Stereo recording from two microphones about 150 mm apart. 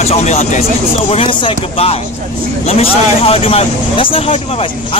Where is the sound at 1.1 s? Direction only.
35° left (ahead or behind).